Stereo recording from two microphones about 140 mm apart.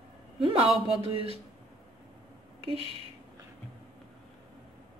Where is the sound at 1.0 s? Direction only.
45° right (ahead or behind).